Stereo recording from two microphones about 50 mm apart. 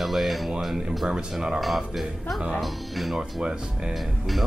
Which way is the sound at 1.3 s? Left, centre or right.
Centre.